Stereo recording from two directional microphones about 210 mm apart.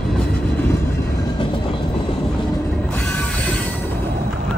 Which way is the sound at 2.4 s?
5° left (ahead or behind).